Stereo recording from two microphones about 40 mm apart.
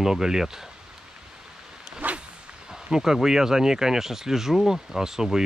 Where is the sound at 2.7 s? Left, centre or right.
Centre.